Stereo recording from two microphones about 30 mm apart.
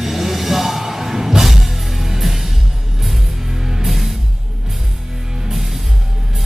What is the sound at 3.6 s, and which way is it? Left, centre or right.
Music, centre.